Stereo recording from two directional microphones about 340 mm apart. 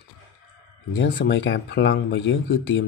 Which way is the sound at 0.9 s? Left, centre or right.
Left.